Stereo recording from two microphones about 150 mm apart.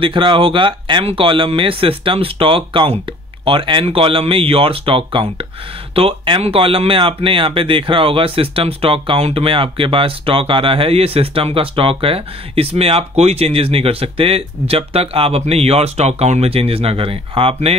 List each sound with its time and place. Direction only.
0.0 s speech: 35° right (ahead or behind)